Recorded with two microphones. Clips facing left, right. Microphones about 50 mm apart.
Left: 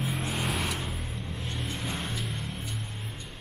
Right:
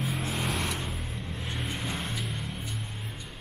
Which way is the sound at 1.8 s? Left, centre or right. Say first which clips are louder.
Even; centre.